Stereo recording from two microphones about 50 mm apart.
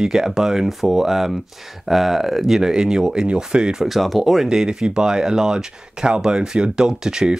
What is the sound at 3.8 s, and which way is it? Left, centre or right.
Speech, centre.